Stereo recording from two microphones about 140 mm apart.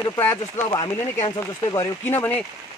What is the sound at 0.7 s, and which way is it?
Speech, 30° left (ahead or behind).